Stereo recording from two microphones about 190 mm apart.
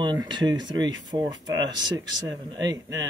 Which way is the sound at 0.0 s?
25° right (ahead or behind).